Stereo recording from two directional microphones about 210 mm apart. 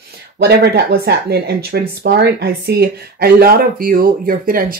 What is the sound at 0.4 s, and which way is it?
Speech, 50° right (ahead or behind).